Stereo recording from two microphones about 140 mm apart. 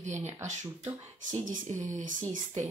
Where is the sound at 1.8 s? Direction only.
65° right (ahead or behind).